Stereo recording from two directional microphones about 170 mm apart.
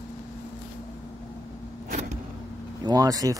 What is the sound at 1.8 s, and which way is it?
Vehicle, 45° right (ahead or behind).